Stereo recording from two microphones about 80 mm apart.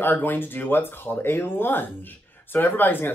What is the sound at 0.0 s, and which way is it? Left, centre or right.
Speech, left.